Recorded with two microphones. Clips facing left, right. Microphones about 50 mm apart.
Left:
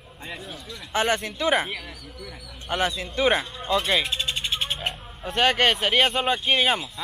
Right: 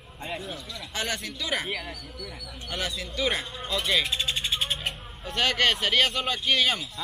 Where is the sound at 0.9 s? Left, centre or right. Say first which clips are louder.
Left 8 dB; left.